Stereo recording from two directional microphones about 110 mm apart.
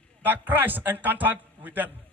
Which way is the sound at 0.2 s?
15° right (ahead or behind).